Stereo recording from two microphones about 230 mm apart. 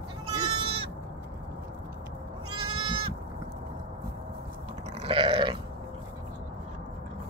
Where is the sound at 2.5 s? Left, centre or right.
Centre.